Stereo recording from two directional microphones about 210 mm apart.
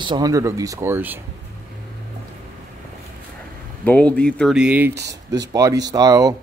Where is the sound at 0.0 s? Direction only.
20° right (ahead or behind).